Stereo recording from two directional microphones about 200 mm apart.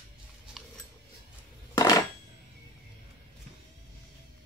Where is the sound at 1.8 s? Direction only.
20° left (ahead or behind).